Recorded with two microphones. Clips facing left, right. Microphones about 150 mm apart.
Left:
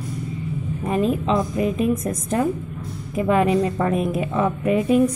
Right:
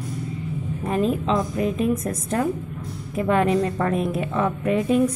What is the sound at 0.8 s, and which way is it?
A woman's voice, 5° left (ahead or behind).